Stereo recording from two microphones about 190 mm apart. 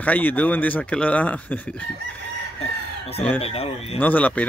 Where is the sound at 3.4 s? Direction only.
30° left (ahead or behind).